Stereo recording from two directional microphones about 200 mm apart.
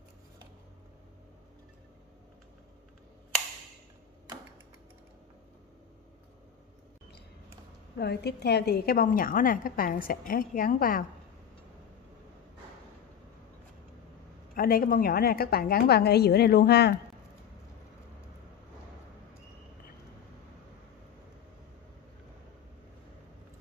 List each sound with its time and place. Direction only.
8.0 s a woman's voice: 55° left (ahead or behind)
14.5 s a woman's voice: 45° left (ahead or behind)